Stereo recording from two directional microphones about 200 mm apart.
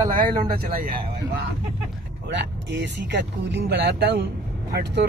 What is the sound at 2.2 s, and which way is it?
Speech, 60° right (ahead or behind).